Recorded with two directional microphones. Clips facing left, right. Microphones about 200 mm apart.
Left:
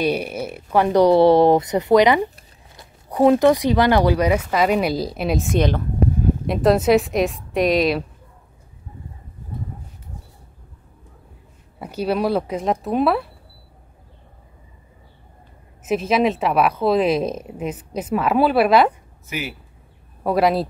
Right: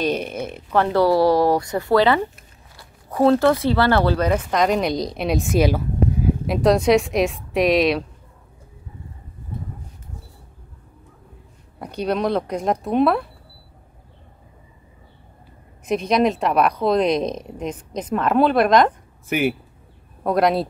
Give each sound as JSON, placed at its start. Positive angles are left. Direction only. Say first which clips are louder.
{"t": 0.0, "sound": "speech", "louder": "left 1 dB", "side_deg": 10}
{"t": 11.8, "sound": "speech", "louder": "left 1 dB", "side_deg": 5}
{"t": 15.8, "sound": "speech", "louder": "even", "side_deg": 5}
{"t": 19.2, "sound": "speech", "louder": "right 9 dB", "side_deg": -55}
{"t": 20.2, "sound": "speech", "louder": "even", "side_deg": 5}